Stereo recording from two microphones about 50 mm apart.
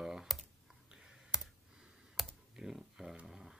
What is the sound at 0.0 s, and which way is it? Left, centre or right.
Computer keyboard, centre.